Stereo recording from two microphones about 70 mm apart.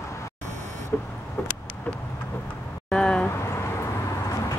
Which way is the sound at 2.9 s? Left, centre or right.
Centre.